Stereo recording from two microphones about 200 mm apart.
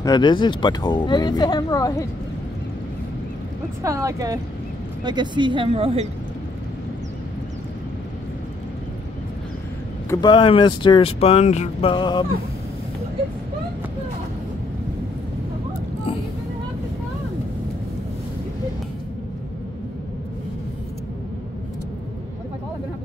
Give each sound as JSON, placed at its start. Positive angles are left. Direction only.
{"t": 0.0, "sound": "speech", "side_deg": 20}
{"t": 3.8, "sound": "speech", "side_deg": -15}
{"t": 10.0, "sound": "speech", "side_deg": 20}